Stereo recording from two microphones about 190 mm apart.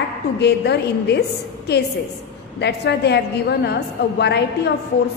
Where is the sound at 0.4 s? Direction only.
60° left (ahead or behind).